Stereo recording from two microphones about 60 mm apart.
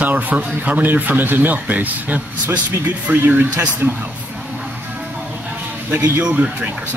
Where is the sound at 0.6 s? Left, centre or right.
Right.